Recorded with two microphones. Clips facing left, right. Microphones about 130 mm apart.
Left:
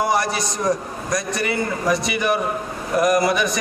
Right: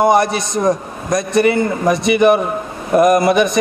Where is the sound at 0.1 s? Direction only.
20° right (ahead or behind).